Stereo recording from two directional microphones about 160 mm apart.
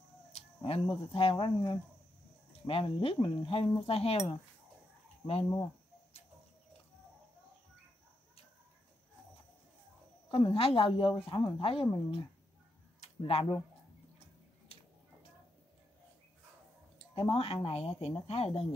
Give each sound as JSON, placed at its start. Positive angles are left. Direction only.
{"t": 0.3, "sound": "a woman's voice", "side_deg": 35}
{"t": 5.2, "sound": "speech", "side_deg": 40}
{"t": 10.3, "sound": "a woman's voice", "side_deg": 35}
{"t": 13.0, "sound": "speech", "side_deg": 35}
{"t": 17.3, "sound": "a woman's voice", "side_deg": 35}